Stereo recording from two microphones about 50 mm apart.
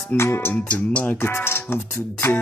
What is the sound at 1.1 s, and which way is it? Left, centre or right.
Music, left.